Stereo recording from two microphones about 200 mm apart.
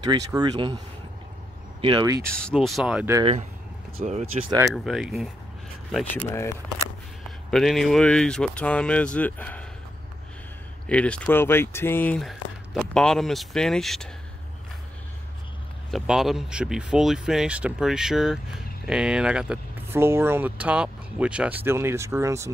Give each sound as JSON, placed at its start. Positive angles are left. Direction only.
{"t": 0.0, "sound": "speech", "side_deg": -20}
{"t": 2.2, "sound": "speech", "side_deg": 5}
{"t": 3.9, "sound": "speech", "side_deg": -35}
{"t": 4.7, "sound": "speech", "side_deg": 0}
{"t": 6.2, "sound": "speech", "side_deg": 15}
{"t": 7.5, "sound": "speech", "side_deg": 0}
{"t": 10.9, "sound": "speech", "side_deg": 5}
{"t": 15.9, "sound": "speech", "side_deg": 0}